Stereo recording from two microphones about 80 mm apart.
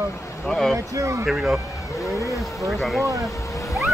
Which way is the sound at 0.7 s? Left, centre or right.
Right.